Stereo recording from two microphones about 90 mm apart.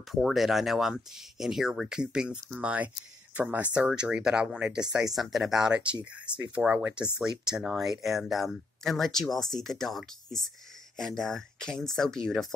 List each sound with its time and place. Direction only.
0.1 s speech: centre (ahead or behind)